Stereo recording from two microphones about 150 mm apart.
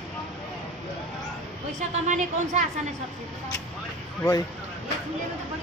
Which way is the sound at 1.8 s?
55° right (ahead or behind).